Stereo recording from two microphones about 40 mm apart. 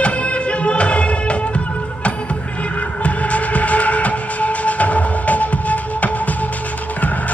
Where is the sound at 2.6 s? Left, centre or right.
Left.